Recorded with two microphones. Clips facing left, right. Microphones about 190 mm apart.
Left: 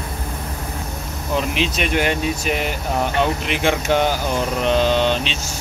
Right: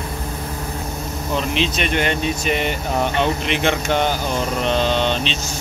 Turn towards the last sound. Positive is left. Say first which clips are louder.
# left 1 dB
turn(degrees=10)  # may be behind; listen again after turning